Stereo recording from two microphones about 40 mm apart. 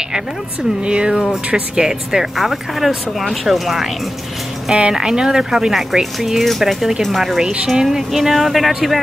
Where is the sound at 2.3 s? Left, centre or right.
Centre.